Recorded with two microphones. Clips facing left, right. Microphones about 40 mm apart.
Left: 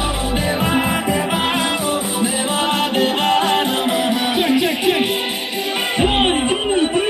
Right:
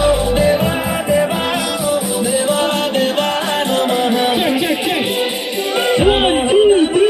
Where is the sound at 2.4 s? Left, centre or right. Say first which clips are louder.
Right 3 dB; centre.